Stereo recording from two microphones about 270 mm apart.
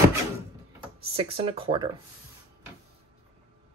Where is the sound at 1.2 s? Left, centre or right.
Right.